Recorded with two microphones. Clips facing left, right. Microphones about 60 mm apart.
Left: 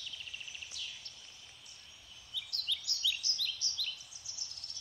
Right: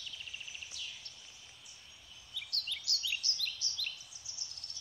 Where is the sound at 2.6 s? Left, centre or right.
Right.